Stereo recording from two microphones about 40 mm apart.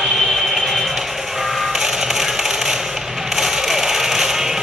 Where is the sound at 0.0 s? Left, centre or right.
Centre.